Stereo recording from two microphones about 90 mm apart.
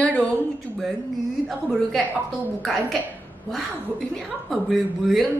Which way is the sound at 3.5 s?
5° left (ahead or behind).